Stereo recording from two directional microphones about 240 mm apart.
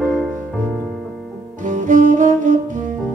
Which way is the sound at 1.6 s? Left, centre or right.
Right.